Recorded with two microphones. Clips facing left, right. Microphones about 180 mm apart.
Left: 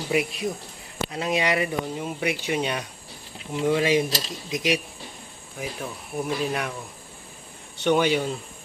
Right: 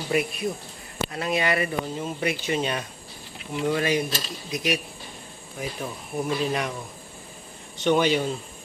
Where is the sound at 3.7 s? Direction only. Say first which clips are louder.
Left 4 dB; 20° left (ahead or behind).